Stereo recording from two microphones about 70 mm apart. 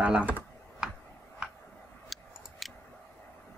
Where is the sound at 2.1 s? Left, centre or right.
Centre.